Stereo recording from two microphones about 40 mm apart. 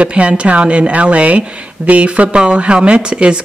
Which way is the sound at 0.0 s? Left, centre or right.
Right.